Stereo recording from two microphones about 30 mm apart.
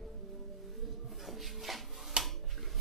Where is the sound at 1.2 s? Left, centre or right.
Centre.